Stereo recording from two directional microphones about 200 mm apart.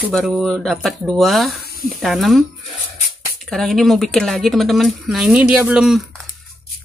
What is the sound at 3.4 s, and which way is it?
Speech, centre (ahead or behind).